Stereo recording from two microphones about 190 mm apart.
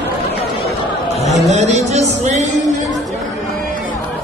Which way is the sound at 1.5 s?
35° right (ahead or behind).